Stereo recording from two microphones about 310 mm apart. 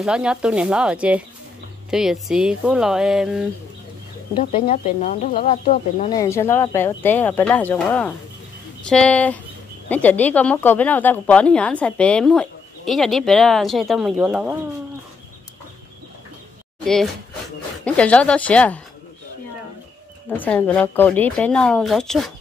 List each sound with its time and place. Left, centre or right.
0.0 s speech: centre
4.4 s speech: left
6.1 s speech: centre
16.8 s speech: centre
20.2 s speech: centre